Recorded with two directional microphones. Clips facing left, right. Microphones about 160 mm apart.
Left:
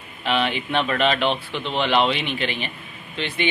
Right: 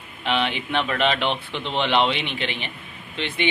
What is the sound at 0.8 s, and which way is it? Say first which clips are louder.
Speech: left 2 dB; 15° right (ahead or behind).